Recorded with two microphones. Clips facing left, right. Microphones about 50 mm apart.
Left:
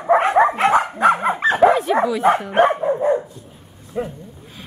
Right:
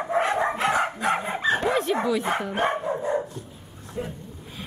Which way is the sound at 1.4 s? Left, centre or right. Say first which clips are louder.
Left 11 dB; left.